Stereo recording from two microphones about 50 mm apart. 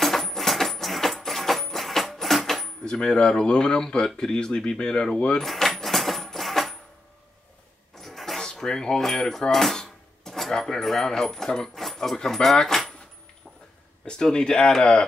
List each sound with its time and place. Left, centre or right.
0.0 s music: centre
2.8 s speech: centre
5.4 s cash register: centre
8.0 s a sound: centre
8.4 s speech: centre
14.0 s speech: centre